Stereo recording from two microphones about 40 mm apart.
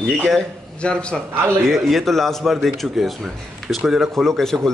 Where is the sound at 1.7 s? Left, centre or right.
Centre.